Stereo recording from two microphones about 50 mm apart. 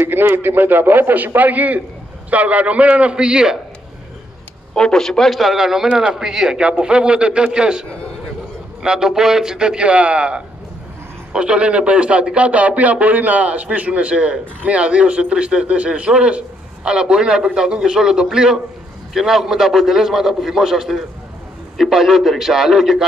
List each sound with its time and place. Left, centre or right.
0.0 s a man's voice: right; by 3.5 s centre
4.7 s speech: centre
5.3 s a man's voice: centre
8.8 s a man's voice: centre